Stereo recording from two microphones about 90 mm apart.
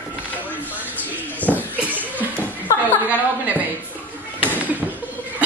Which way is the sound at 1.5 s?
20° right (ahead or behind).